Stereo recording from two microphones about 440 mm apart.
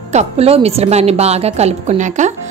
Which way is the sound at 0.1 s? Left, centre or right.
Centre.